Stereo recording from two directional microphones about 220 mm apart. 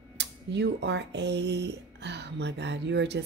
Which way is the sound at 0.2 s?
50° right (ahead or behind).